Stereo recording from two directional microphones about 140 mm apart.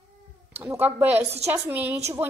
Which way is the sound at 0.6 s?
20° right (ahead or behind).